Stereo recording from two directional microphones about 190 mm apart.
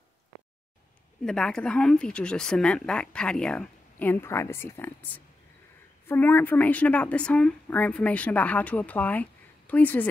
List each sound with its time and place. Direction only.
1.2 s a woman's voice: 5° left (ahead or behind)